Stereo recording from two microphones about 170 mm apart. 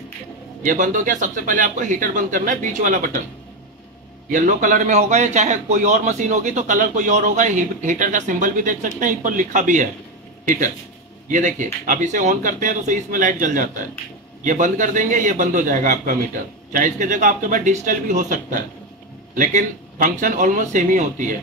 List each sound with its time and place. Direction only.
0.6 s a man's voice: 50° right (ahead or behind)
4.3 s a man's voice: 50° right (ahead or behind)